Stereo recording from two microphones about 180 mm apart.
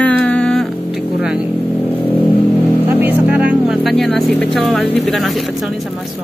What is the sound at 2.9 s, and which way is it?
Speech, 10° right (ahead or behind).